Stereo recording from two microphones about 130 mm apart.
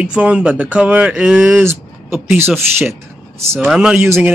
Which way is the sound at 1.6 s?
15° right (ahead or behind).